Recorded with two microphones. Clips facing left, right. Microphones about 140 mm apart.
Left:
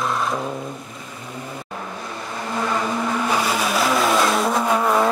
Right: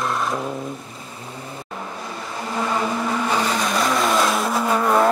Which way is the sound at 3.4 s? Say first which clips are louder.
Even; 5° left (ahead or behind).